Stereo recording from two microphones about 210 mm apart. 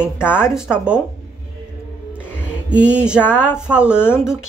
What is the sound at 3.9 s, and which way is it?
Speech, 10° left (ahead or behind).